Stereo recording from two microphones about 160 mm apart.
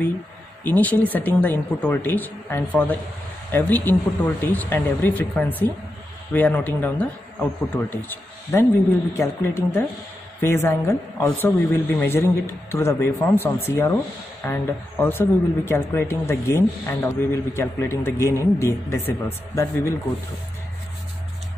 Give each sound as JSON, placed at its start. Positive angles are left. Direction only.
{"t": 0.7, "sound": "speech", "side_deg": 10}